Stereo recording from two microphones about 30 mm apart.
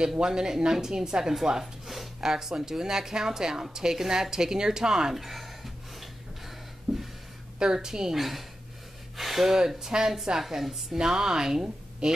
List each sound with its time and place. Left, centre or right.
0.0 s speech: right
5.1 s speech: centre
6.9 s a sound: centre
7.5 s speech: right
8.2 s speech: centre
9.8 s speech: right